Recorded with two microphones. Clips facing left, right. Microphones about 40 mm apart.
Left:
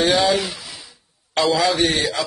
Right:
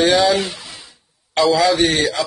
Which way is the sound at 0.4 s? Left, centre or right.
Centre.